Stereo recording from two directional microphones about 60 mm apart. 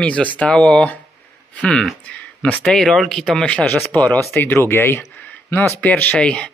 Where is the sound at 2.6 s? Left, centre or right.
Centre.